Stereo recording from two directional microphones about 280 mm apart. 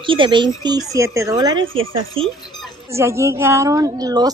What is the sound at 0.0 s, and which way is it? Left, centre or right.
A woman's voice, centre.